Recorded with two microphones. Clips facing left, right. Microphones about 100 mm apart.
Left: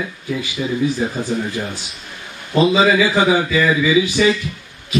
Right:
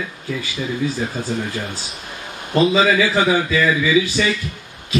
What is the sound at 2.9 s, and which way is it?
Speech, 15° left (ahead or behind).